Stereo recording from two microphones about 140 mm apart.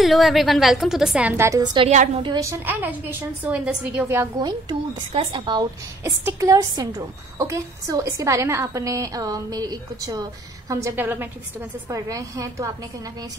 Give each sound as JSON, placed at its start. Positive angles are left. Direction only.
{"t": 0.0, "sound": "a woman's voice", "side_deg": 0}
{"t": 1.3, "sound": "a woman's voice", "side_deg": -20}
{"t": 1.6, "sound": "a woman's voice", "side_deg": -35}
{"t": 2.6, "sound": "a woman's voice", "side_deg": -15}
{"t": 4.4, "sound": "a woman's voice", "side_deg": -30}